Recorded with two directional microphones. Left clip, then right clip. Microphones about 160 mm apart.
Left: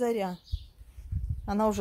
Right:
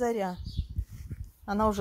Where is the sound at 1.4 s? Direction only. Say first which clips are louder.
Even; 10° left (ahead or behind).